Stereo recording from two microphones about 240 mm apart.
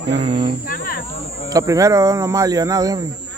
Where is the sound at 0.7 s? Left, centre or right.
Left.